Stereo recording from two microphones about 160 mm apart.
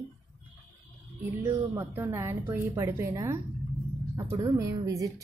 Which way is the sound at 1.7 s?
15° right (ahead or behind).